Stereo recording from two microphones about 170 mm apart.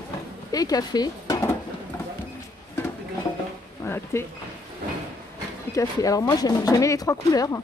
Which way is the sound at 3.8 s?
15° left (ahead or behind).